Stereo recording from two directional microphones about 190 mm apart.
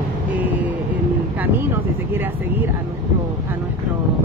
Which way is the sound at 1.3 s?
10° right (ahead or behind).